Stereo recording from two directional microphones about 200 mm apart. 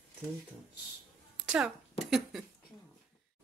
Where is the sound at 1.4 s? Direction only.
5° right (ahead or behind).